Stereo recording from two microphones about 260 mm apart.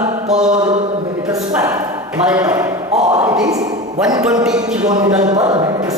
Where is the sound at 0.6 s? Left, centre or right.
Centre.